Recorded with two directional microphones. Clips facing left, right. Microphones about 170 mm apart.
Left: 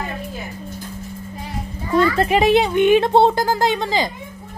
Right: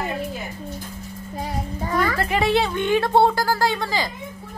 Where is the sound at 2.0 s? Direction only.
20° left (ahead or behind).